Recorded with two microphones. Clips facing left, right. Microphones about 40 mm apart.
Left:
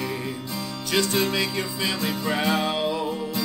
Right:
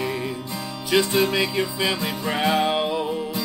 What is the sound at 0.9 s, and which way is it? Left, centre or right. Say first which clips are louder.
Music: right 3 dB; centre.